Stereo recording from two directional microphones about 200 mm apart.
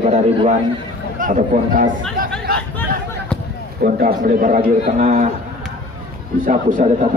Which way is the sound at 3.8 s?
45° right (ahead or behind).